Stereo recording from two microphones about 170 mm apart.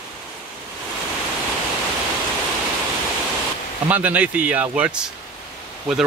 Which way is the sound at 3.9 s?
10° right (ahead or behind).